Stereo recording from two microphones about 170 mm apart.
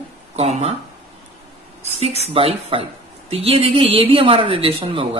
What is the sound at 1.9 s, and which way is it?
A woman's voice, 35° right (ahead or behind).